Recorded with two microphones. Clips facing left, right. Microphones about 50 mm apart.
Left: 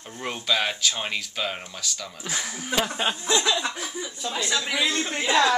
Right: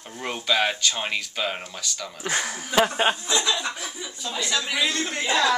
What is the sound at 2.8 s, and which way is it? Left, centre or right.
Speech, right.